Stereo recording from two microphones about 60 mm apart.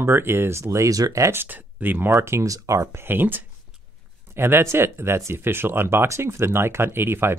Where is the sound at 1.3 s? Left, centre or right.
Right.